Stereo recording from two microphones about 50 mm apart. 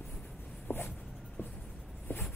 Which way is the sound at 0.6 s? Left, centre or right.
Left.